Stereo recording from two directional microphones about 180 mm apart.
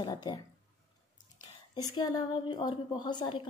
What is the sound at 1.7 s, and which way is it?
Speech, 25° left (ahead or behind).